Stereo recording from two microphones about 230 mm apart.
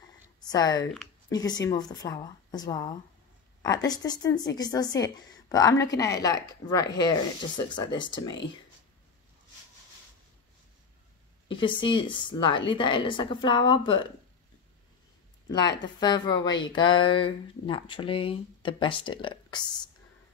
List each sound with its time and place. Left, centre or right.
0.5 s a woman's voice: centre
11.4 s speech: left
15.4 s speech: centre